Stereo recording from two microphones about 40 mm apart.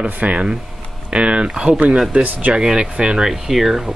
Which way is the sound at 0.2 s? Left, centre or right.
Right.